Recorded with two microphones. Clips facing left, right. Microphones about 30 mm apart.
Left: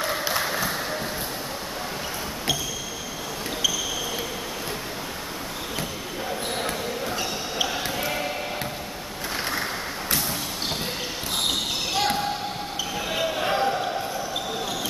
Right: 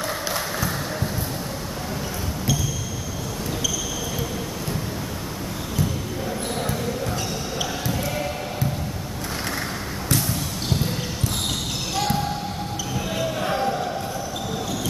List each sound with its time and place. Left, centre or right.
0.0 s music: centre
7.5 s basketball bounce: left
9.6 s a sound: centre
11.4 s basketball bounce: left